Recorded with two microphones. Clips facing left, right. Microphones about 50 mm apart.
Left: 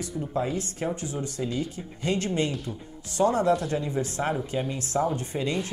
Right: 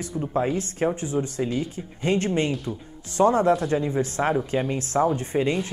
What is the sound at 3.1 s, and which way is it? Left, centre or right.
Speech, right.